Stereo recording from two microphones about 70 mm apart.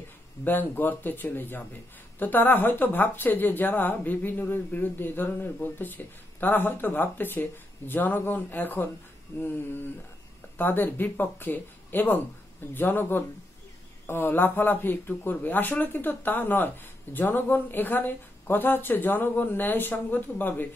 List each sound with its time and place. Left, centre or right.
0.4 s speech: left
10.6 s speech: left